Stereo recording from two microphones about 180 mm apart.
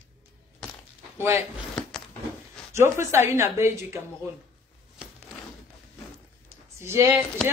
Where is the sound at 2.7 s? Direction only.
15° right (ahead or behind).